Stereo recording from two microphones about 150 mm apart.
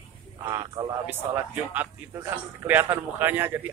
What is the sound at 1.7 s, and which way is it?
A man's voice, 10° right (ahead or behind).